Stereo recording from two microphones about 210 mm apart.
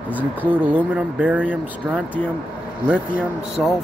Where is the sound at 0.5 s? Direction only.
10° right (ahead or behind).